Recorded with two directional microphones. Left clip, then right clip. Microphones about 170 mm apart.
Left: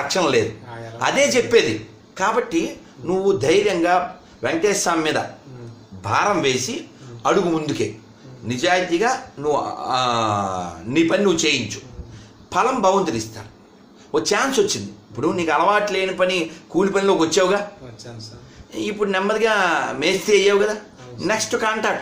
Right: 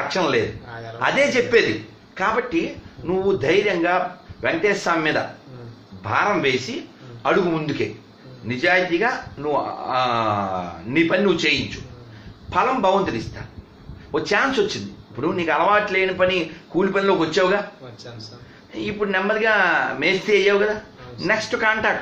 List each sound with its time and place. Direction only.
0.1 s speech: 20° left (ahead or behind)
18.7 s a man's voice: 25° left (ahead or behind)